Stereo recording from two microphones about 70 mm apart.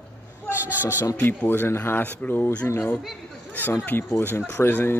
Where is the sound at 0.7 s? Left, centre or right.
Right.